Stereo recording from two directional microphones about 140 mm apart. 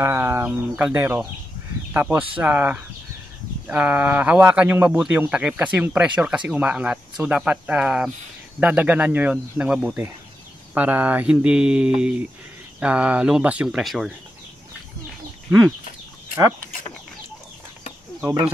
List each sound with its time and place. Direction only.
0.0 s speech: 20° right (ahead or behind); by 14.1 s centre (ahead or behind)